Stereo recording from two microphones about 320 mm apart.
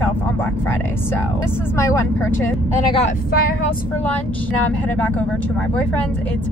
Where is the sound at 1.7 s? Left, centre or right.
Centre.